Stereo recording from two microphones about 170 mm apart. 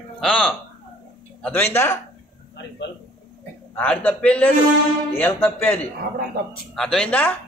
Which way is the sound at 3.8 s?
10° left (ahead or behind).